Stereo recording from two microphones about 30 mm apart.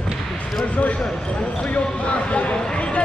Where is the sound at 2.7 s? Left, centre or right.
Left.